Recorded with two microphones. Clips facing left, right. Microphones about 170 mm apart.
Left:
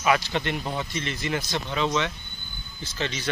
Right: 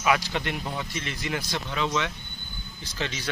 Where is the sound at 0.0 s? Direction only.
5° right (ahead or behind).